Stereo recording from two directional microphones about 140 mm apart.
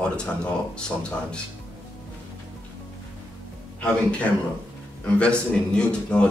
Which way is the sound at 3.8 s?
10° left (ahead or behind).